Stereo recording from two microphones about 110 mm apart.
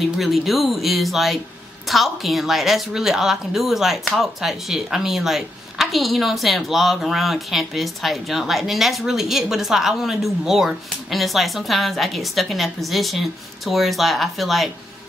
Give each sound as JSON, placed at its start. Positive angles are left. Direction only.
{"t": 0.0, "sound": "a woman's voice", "side_deg": 0}